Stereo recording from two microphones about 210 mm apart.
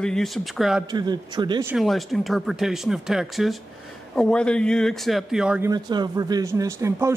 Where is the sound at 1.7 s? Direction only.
Centre (ahead or behind).